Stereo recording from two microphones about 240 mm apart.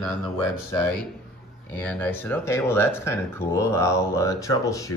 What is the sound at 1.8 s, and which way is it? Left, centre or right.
Speech, centre.